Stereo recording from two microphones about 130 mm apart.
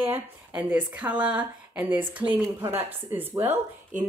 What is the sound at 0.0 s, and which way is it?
Speech, 15° right (ahead or behind).